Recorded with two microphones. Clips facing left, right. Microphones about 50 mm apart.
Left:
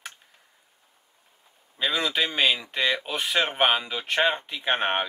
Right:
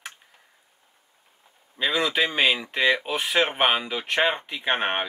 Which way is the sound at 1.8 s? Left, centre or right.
Centre.